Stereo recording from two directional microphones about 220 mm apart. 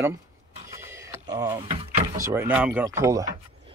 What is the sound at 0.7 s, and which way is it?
Neigh, 10° right (ahead or behind).